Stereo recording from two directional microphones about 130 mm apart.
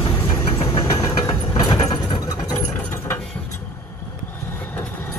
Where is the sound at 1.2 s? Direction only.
40° left (ahead or behind).